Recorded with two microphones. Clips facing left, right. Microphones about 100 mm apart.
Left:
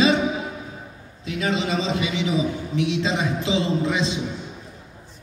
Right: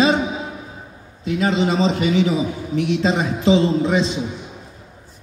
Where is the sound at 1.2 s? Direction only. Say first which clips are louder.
Right 6 dB; 35° right (ahead or behind).